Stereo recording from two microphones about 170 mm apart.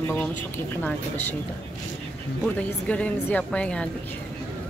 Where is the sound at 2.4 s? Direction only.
5° left (ahead or behind).